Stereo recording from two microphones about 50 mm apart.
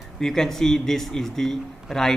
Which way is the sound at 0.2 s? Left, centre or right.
Centre.